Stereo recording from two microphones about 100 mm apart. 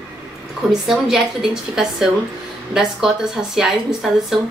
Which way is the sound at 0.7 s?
5° right (ahead or behind).